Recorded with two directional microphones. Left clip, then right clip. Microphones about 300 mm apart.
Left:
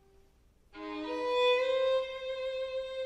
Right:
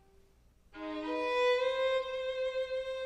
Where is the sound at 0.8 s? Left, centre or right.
Right.